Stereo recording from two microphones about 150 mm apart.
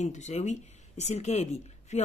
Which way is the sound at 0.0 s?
50° left (ahead or behind).